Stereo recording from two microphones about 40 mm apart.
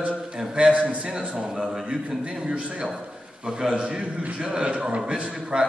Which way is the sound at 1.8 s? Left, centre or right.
Right.